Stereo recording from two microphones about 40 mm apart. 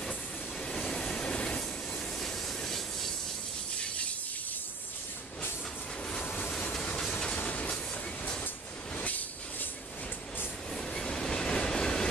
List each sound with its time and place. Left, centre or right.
0.7 s vehicle: centre
2.1 s train: centre
7.1 s train: left
7.4 s train: left
9.0 s train: left
11.0 s train: centre